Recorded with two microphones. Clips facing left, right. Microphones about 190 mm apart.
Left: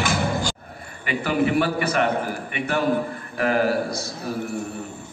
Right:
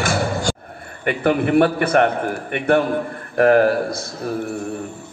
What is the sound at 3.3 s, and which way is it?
Speech, 55° right (ahead or behind).